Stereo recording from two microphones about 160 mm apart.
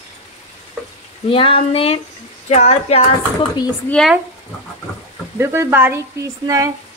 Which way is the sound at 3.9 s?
Centre (ahead or behind).